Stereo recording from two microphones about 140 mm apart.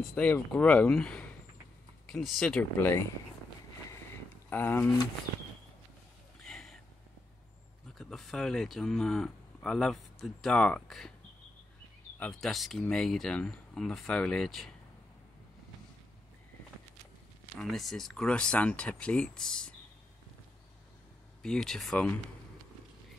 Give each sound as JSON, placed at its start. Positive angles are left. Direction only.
{"t": 0.0, "sound": "speech", "side_deg": 10}
{"t": 4.5, "sound": "speech", "side_deg": 15}
{"t": 6.4, "sound": "a sound", "side_deg": 5}
{"t": 8.0, "sound": "speech", "side_deg": 0}
{"t": 12.2, "sound": "speech", "side_deg": 5}
{"t": 17.6, "sound": "speech", "side_deg": 0}
{"t": 21.4, "sound": "speech", "side_deg": 5}